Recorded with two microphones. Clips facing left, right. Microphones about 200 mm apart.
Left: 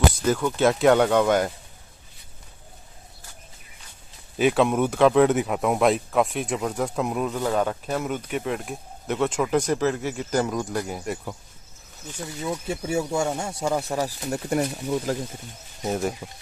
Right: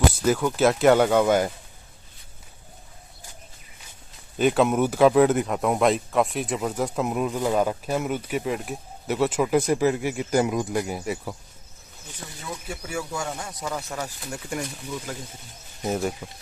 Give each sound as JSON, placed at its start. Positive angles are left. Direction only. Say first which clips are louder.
{"t": 0.3, "sound": "speech", "louder": "right 1 dB", "side_deg": -5}
{"t": 4.4, "sound": "speech", "louder": "even", "side_deg": 0}
{"t": 11.0, "sound": "speech", "louder": "right 1 dB", "side_deg": 0}
{"t": 12.6, "sound": "speech", "louder": "left 5 dB", "side_deg": 25}
{"t": 15.8, "sound": "speech", "louder": "even", "side_deg": 0}